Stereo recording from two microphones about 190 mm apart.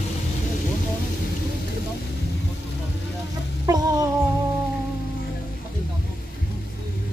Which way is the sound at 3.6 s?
20° right (ahead or behind).